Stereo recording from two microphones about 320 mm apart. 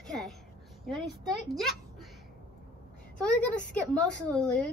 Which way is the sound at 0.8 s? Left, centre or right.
Centre.